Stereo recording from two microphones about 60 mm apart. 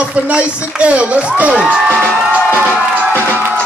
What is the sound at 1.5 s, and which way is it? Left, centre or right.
Music, centre.